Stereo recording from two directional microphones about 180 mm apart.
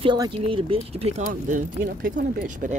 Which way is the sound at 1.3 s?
45° right (ahead or behind).